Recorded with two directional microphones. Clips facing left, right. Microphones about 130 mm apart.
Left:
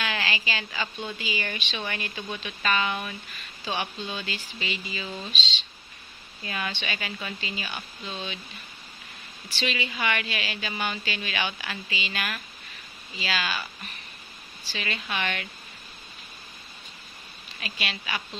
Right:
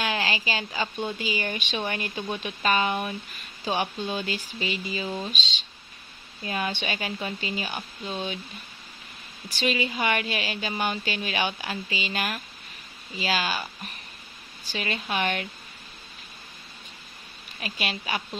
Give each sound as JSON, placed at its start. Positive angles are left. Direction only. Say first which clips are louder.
{"t": 0.0, "sound": "a sound", "louder": "right 3 dB", "side_deg": -40}
{"t": 1.1, "sound": "a woman's voice", "louder": "right 3 dB", "side_deg": -45}
{"t": 5.3, "sound": "a woman's voice", "louder": "even", "side_deg": -45}
{"t": 9.6, "sound": "a woman's voice", "louder": "right 4 dB", "side_deg": -40}
{"t": 17.6, "sound": "a woman's voice", "louder": "right 3 dB", "side_deg": -45}